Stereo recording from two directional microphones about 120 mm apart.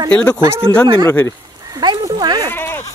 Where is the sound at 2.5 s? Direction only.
20° left (ahead or behind).